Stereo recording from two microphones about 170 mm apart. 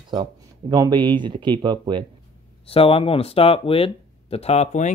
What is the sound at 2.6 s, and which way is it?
Speech, 35° left (ahead or behind).